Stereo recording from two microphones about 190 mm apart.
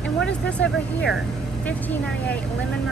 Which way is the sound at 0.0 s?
5° left (ahead or behind).